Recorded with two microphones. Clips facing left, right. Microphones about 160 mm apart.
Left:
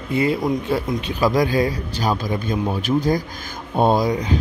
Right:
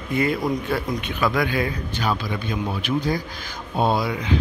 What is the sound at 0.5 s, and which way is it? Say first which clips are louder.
A man's voice: left 3 dB; 25° left (ahead or behind).